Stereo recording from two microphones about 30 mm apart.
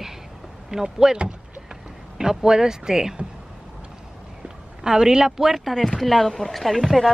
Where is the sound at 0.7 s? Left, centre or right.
Centre.